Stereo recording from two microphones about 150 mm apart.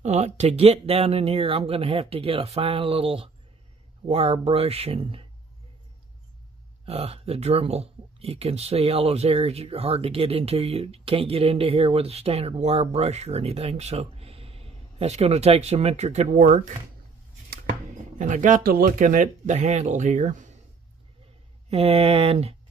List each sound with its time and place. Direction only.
0.0 s speech: 50° right (ahead or behind)
6.9 s speech: 40° right (ahead or behind)
21.6 s speech: 40° right (ahead or behind)